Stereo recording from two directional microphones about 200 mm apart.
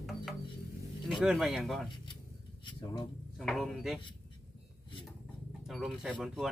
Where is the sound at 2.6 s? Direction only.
25° left (ahead or behind).